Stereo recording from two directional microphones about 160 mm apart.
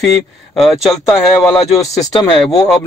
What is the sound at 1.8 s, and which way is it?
Speech, 20° left (ahead or behind).